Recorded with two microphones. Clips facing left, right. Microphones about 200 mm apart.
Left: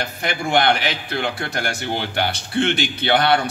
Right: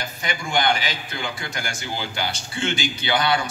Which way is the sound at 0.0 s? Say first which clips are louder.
Left 5 dB; 65° left (ahead or behind).